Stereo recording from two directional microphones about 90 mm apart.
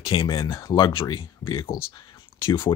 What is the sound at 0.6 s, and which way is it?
Speech, 50° left (ahead or behind).